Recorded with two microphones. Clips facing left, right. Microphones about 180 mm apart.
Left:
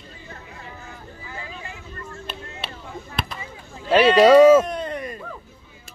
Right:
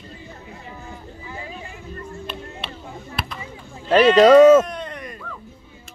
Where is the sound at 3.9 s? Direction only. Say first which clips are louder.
Right 2 dB; 10° left (ahead or behind).